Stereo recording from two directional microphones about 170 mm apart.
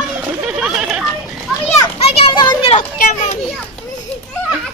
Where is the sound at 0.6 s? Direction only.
5° right (ahead or behind).